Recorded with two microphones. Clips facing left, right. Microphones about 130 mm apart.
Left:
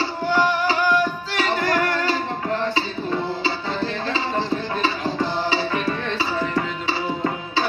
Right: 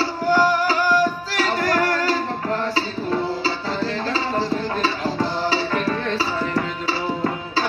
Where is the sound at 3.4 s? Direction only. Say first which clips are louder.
Right 1 dB; 35° right (ahead or behind).